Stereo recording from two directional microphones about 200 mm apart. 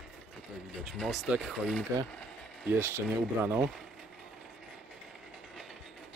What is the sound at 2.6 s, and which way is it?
Speech, 10° right (ahead or behind).